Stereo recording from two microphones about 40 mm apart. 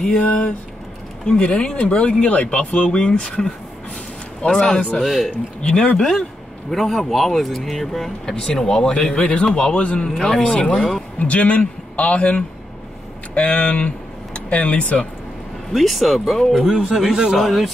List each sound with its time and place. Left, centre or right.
0.0 s speech: left
5.0 s a man's voice: centre; by 10.0 s left
10.0 s a man's voice: centre
10.4 s a man's voice: left
15.7 s speech: centre
16.9 s a man's voice: centre